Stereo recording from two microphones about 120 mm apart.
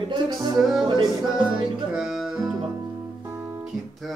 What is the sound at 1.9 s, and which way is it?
Music, 5° right (ahead or behind).